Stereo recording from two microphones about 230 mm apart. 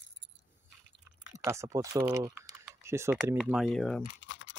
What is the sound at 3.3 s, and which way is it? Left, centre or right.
Speech, centre.